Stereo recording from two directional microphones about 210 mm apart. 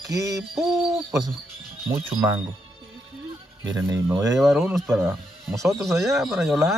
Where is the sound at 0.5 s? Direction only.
Centre (ahead or behind).